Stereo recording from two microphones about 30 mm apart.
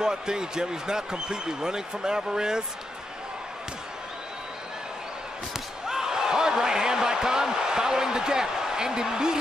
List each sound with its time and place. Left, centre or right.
0.0 s speech: right
5.9 s basketball bounce: centre